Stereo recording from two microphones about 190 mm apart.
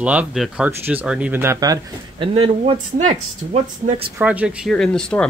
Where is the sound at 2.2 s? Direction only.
30° right (ahead or behind).